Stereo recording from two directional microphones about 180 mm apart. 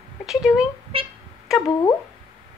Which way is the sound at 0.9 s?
30° right (ahead or behind).